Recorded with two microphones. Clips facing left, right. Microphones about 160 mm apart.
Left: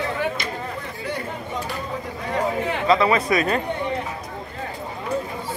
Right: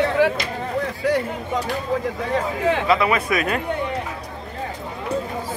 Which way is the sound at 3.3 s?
5° right (ahead or behind).